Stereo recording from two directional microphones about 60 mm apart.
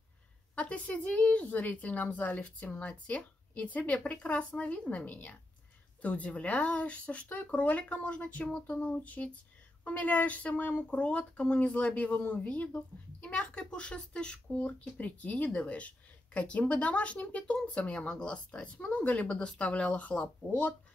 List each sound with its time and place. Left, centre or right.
0.6 s speech: left